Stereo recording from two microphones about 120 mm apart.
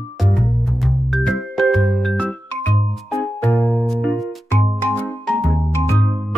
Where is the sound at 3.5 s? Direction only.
15° left (ahead or behind).